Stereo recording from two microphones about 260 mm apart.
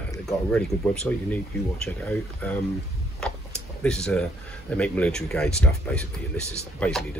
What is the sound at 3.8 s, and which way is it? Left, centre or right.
Speech, centre.